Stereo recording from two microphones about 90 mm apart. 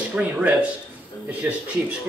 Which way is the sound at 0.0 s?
15° right (ahead or behind).